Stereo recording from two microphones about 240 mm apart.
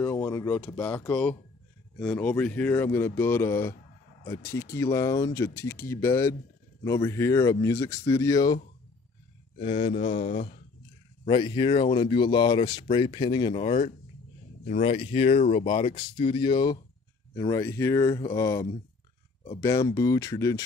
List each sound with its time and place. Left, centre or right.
0.0 s speech: centre
9.6 s speech: left
15.9 s speech: left
16.3 s speech: centre